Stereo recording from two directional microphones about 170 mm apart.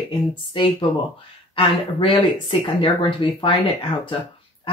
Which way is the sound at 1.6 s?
30° left (ahead or behind).